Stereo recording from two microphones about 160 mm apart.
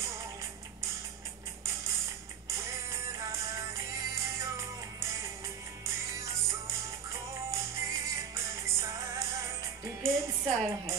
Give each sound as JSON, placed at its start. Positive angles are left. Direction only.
{"t": 2.5, "sound": "music", "side_deg": -15}